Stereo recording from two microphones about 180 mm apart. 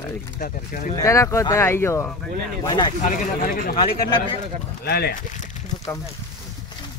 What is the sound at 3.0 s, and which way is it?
Speech, 50° left (ahead or behind).